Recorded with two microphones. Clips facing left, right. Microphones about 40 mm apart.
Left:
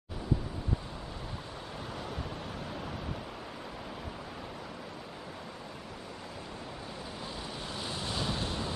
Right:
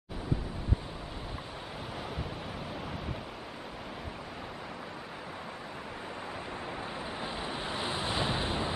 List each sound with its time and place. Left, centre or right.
7.7 s vehicle: right